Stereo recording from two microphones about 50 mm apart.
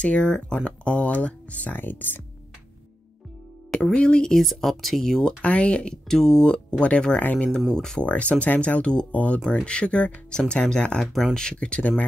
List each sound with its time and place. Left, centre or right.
0.0 s speech: centre
1.7 s speech: left
3.7 s speech: centre
4.3 s speech: centre
5.2 s speech: left
6.0 s speech: centre
7.2 s speech: left
7.6 s speech: centre
8.0 s speech: left
11.1 s speech: centre
11.4 s speech: left